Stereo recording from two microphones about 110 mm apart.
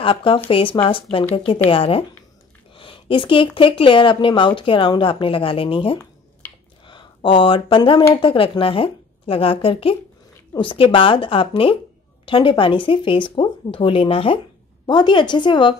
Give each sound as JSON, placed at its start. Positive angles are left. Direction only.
{"t": 0.0, "sound": "a woman's voice", "side_deg": 50}
{"t": 6.4, "sound": "a sound", "side_deg": 15}
{"t": 7.2, "sound": "a woman's voice", "side_deg": 50}
{"t": 14.9, "sound": "speech", "side_deg": 45}